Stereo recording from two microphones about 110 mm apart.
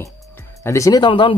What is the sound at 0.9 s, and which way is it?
Speech, 45° left (ahead or behind).